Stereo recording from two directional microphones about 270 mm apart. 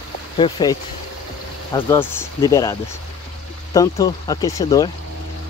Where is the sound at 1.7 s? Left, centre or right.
Centre.